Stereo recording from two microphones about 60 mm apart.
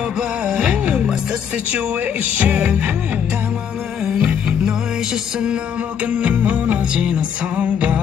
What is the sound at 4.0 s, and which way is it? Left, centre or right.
Music, centre.